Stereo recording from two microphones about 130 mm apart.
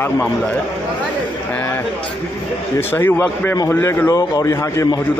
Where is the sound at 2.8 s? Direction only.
15° left (ahead or behind).